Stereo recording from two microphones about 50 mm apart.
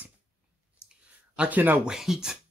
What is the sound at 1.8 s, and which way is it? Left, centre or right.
Speech, centre.